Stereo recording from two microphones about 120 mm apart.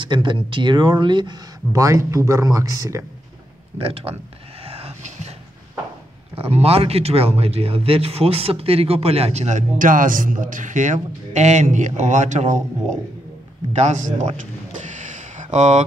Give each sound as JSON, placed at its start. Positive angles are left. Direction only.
{"t": 0.0, "sound": "speech", "side_deg": -40}
{"t": 1.7, "sound": "speech", "side_deg": -25}
{"t": 3.7, "sound": "speech", "side_deg": -50}
{"t": 4.6, "sound": "a sound", "side_deg": -55}
{"t": 6.3, "sound": "a man's voice", "side_deg": -55}
{"t": 13.7, "sound": "speech", "side_deg": -80}